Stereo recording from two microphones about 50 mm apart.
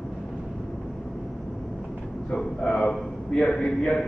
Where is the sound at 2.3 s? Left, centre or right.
Centre.